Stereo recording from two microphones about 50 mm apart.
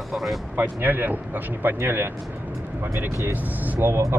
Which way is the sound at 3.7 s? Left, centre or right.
Right.